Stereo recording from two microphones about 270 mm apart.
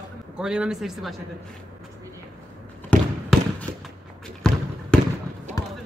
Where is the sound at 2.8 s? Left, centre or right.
Centre.